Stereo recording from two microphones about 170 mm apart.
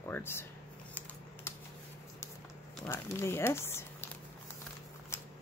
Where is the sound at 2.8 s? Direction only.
15° left (ahead or behind).